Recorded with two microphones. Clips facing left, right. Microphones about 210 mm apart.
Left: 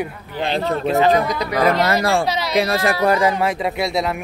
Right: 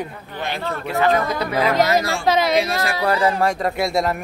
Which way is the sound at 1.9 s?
55° left (ahead or behind).